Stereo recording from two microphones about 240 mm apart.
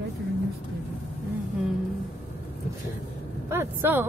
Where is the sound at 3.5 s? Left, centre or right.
Centre.